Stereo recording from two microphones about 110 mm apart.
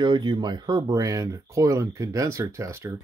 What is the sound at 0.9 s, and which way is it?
Speech, 30° right (ahead or behind).